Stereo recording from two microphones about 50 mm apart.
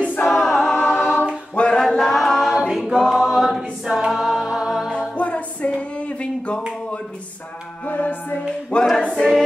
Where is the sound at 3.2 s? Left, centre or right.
Centre.